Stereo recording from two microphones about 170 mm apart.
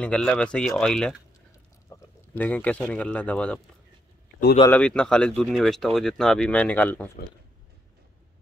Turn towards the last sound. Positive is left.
turn(degrees=10)  # may be behind; listen again after turning